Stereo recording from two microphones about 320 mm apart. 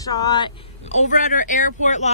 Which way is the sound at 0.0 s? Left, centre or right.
Centre.